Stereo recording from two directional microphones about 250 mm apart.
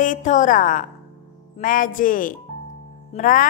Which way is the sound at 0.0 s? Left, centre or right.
Left.